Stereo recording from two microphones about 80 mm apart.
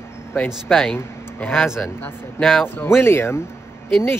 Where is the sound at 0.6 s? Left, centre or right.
Centre.